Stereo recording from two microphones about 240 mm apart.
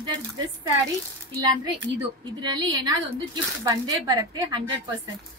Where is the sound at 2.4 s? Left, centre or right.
Centre.